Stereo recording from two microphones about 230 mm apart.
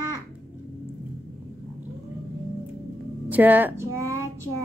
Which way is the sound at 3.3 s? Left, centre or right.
Centre.